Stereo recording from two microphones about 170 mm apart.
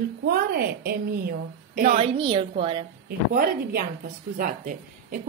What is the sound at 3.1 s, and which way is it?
Speech, 65° right (ahead or behind).